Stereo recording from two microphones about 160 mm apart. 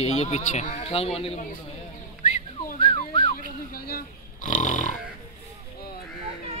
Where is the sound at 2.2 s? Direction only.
45° left (ahead or behind).